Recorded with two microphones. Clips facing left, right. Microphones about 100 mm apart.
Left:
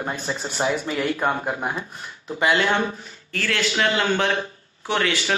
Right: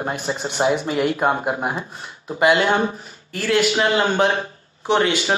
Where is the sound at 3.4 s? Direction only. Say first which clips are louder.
Right 5 dB; 20° right (ahead or behind).